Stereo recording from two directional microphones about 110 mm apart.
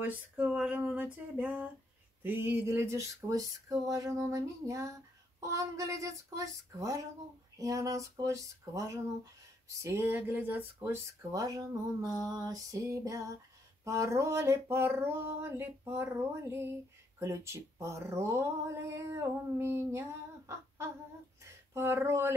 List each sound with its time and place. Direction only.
0.0 s speech: 15° right (ahead or behind)
11.3 s female singing: 35° right (ahead or behind)
13.8 s speech: 30° right (ahead or behind)
21.4 s a sound: 25° right (ahead or behind)